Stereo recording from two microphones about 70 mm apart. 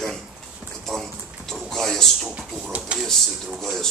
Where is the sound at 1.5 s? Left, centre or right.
Centre.